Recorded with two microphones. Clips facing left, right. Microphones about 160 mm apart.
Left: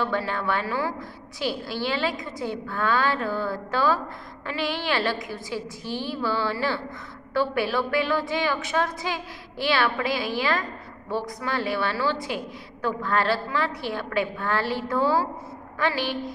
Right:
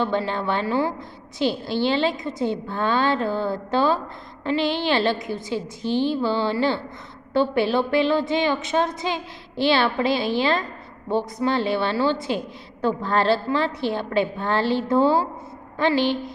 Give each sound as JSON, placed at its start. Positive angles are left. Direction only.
{"t": 0.0, "sound": "a woman's voice", "side_deg": -25}